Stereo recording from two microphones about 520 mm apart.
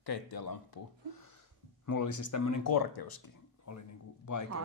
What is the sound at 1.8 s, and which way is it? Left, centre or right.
Speech, left.